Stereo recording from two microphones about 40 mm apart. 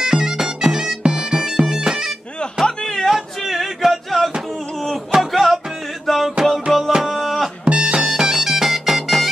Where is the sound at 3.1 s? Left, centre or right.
Centre.